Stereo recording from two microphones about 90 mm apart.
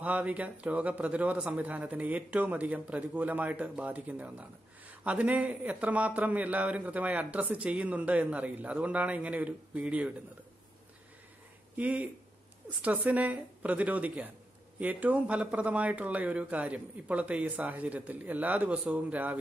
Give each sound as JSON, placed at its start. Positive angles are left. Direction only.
{"t": 0.0, "sound": "a man's voice", "side_deg": -15}
{"t": 11.7, "sound": "a man's voice", "side_deg": -15}